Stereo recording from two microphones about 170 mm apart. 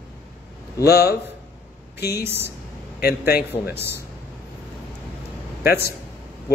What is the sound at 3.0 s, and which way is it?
Speech, 65° left (ahead or behind).